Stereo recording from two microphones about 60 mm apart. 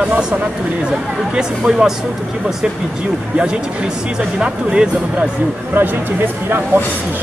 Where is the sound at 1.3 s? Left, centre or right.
Centre.